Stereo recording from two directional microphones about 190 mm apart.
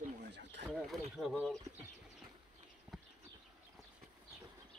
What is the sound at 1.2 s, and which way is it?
Speech, centre (ahead or behind).